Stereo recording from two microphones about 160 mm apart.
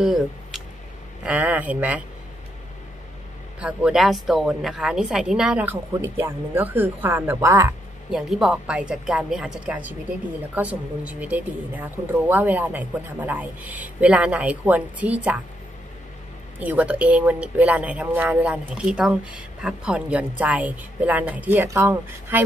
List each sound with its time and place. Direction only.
0.0 s speech: centre (ahead or behind)
3.5 s speech: 5° right (ahead or behind)
8.1 s a woman's voice: 5° right (ahead or behind)
16.5 s speech: 10° right (ahead or behind)